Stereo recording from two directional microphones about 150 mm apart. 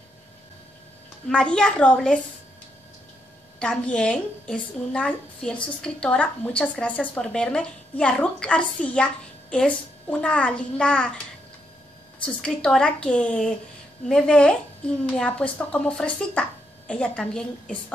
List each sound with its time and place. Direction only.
1.3 s a woman's voice: 5° left (ahead or behind)
3.5 s a woman's voice: 5° left (ahead or behind)
12.4 s a woman's voice: 5° left (ahead or behind)